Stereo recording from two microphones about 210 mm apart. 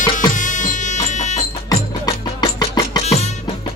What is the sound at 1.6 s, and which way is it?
Music, 20° left (ahead or behind).